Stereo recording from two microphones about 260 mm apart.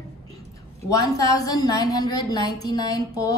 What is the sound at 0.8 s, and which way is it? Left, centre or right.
A woman's voice, centre.